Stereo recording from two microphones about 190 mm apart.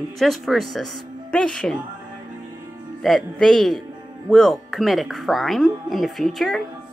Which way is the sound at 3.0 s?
Centre (ahead or behind).